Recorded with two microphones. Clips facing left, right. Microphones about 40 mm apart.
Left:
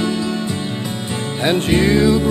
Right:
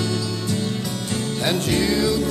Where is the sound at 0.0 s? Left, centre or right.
Left.